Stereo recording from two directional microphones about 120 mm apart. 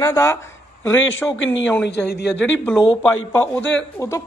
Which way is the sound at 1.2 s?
5° left (ahead or behind).